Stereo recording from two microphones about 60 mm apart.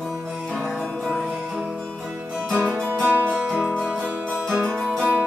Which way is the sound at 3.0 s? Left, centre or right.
Right.